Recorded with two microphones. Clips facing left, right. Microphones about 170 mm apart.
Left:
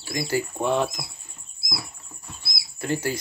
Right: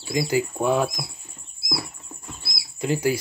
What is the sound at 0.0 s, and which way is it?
Speech, 15° right (ahead or behind).